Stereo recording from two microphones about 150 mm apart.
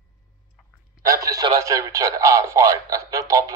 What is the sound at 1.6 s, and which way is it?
Radio, 20° right (ahead or behind).